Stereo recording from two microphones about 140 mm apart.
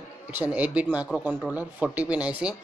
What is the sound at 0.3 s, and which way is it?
Speech, 10° right (ahead or behind).